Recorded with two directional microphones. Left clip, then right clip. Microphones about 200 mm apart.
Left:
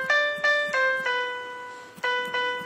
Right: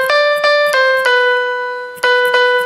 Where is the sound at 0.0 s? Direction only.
45° right (ahead or behind).